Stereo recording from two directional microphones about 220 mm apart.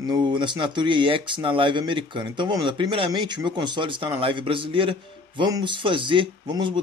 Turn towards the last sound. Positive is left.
turn(degrees=-20)  # may be behind; listen again after turning